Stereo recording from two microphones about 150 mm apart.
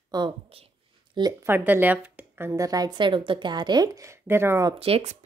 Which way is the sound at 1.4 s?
15° right (ahead or behind).